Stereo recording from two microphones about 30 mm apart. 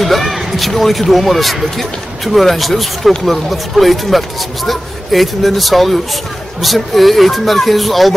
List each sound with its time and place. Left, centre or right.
0.0 s speech: centre